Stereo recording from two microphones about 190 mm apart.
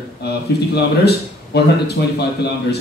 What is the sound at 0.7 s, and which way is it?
Speech, 60° left (ahead or behind).